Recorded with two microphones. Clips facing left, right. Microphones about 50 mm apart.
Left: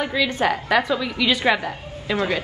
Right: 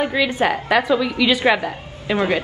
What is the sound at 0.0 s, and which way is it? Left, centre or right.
Speech, right.